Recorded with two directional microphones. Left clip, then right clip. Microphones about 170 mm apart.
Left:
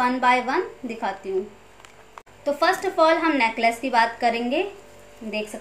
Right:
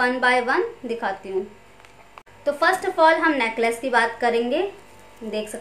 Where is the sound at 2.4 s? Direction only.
15° right (ahead or behind).